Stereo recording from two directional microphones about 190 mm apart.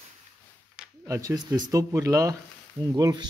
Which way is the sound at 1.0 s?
15° right (ahead or behind).